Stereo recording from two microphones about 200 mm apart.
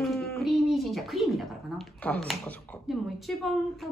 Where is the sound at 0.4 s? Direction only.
Centre (ahead or behind).